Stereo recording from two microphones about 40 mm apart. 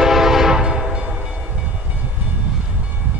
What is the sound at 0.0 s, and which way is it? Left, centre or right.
Train, centre.